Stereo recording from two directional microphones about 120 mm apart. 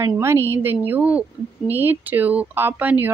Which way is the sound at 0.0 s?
20° right (ahead or behind).